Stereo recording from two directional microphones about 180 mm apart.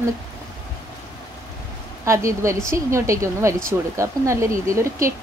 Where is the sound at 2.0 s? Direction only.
15° right (ahead or behind).